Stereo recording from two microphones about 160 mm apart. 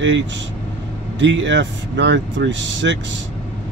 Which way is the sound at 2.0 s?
90° right.